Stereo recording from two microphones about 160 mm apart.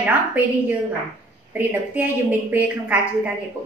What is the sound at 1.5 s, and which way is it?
A woman's voice, 10° right (ahead or behind).